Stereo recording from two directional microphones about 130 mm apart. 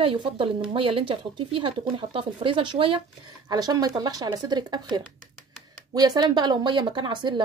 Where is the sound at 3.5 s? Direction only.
30° right (ahead or behind).